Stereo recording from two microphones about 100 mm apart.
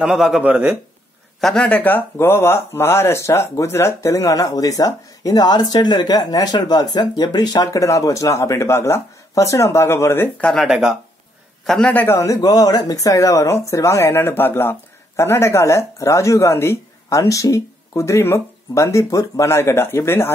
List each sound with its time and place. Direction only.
0.0 s a man's voice: 5° right (ahead or behind)
0.4 s speech: 15° right (ahead or behind)
1.4 s speech: 10° left (ahead or behind); by 10.3 s 25° left (ahead or behind)
10.4 s a man's voice: 5° left (ahead or behind)
10.7 s a man's voice: 10° right (ahead or behind)
12.1 s speech: 30° left (ahead or behind)